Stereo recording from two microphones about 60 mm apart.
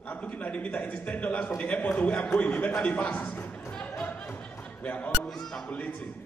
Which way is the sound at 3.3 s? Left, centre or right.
Left.